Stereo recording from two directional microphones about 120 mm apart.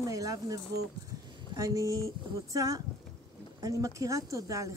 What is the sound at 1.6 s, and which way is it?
Speech, 30° right (ahead or behind).